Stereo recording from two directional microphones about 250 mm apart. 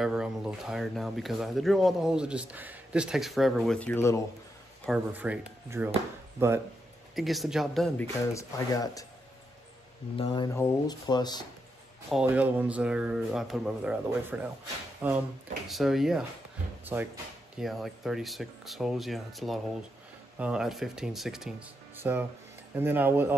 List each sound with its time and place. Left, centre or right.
0.0 s speech: centre
4.8 s speech: centre
7.2 s speech: centre
8.3 s speech: centre
10.1 s speech: left
12.1 s speech: centre
21.9 s music: centre
22.8 s speech: centre